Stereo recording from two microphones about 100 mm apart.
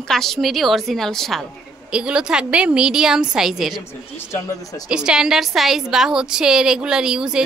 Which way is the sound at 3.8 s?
25° left (ahead or behind).